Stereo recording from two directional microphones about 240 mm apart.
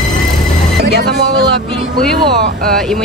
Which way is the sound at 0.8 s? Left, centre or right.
Right.